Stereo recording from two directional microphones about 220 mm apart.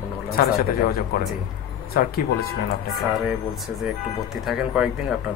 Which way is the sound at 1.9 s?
45° left (ahead or behind).